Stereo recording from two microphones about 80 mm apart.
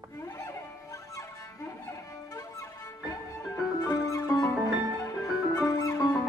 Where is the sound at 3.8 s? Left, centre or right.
Left.